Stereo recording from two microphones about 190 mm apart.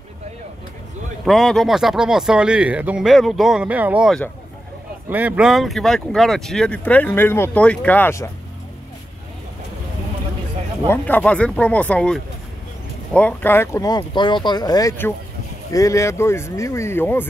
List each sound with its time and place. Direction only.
1.2 s speech: centre (ahead or behind)
10.9 s speech: 10° left (ahead or behind)